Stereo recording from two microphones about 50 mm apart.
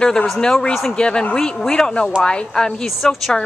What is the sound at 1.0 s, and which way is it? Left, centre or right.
Speech, centre.